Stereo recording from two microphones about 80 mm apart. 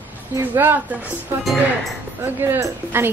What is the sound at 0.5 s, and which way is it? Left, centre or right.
Speech, right.